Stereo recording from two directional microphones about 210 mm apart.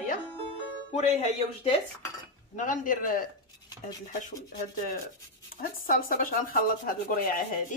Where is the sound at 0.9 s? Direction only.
30° left (ahead or behind).